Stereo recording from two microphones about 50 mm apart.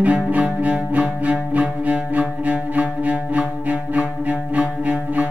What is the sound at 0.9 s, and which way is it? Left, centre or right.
Music, right.